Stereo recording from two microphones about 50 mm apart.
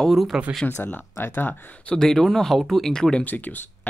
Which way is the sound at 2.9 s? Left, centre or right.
Centre.